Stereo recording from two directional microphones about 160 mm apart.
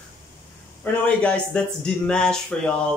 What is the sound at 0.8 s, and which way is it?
Speech, 10° left (ahead or behind).